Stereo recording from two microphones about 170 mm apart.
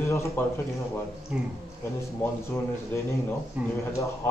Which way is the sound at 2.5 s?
15° left (ahead or behind).